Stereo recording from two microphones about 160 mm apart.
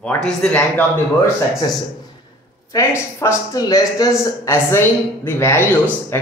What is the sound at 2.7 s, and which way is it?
Speech, 15° left (ahead or behind).